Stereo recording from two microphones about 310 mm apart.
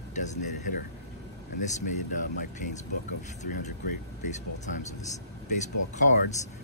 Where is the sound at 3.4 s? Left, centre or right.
Left.